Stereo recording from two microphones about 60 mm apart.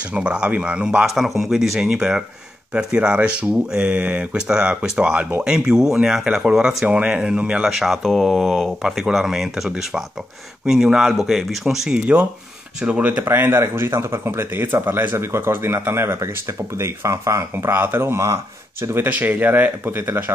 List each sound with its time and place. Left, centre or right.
0.1 s speech: centre
1.0 s speech: centre
7.7 s speech: centre
12.8 s speech: right
13.2 s speech: right
15.1 s speech: right
18.1 s speech: right
18.9 s speech: right